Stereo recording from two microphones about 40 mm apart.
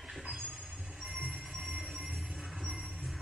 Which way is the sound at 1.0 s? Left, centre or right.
Right.